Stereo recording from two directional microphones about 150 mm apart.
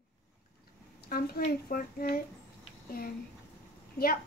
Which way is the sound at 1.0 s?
90° left.